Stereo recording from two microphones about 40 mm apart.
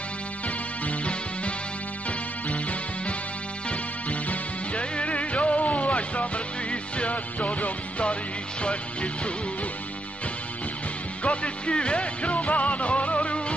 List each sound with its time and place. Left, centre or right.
0.8 s music: left
4.1 s music: left
11.2 s music: left